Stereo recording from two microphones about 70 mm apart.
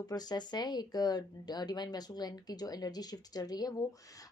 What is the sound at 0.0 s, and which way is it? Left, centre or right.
Speech, left.